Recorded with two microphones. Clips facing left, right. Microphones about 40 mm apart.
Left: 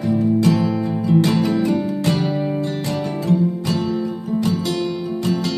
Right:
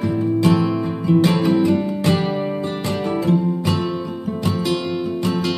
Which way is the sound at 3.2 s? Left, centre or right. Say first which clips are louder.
Left 1 dB; right.